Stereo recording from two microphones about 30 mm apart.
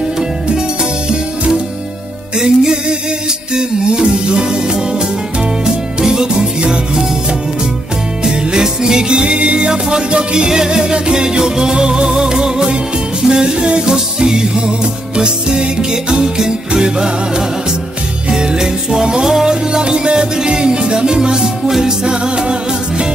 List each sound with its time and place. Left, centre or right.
2.3 s music: right
5.9 s music: right
8.2 s music: right
9.2 s music: right
9.7 s music: right
13.9 s music: right
18.4 s music: right
19.2 s music: centre
19.5 s music: right
21.6 s music: centre
22.0 s music: right